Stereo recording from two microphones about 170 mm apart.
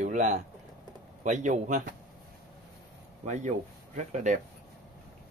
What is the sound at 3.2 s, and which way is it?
Speech, 45° right (ahead or behind).